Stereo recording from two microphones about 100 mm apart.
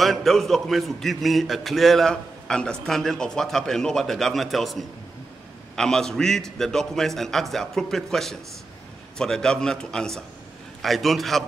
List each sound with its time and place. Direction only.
0.0 s a man's voice: centre (ahead or behind)